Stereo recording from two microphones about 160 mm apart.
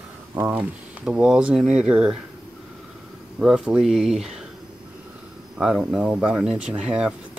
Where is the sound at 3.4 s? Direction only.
5° right (ahead or behind).